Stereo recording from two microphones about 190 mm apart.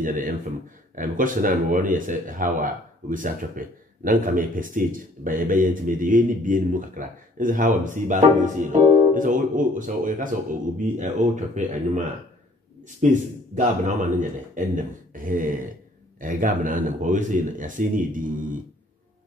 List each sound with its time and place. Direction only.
0.0 s a man's voice: 45° right (ahead or behind)